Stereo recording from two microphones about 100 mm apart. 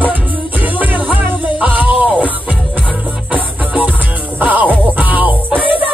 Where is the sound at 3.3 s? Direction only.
15° right (ahead or behind).